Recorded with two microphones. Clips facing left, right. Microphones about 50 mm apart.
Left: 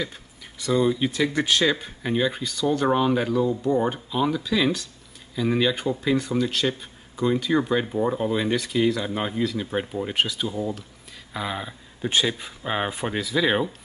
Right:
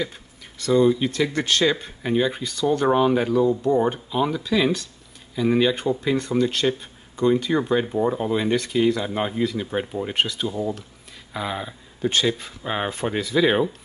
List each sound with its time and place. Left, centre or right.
0.6 s speech: centre
12.1 s speech: centre